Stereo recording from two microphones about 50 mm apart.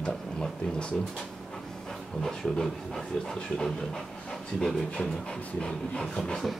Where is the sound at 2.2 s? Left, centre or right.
Centre.